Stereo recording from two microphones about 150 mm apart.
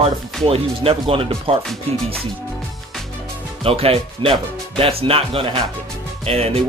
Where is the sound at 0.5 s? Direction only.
40° right (ahead or behind).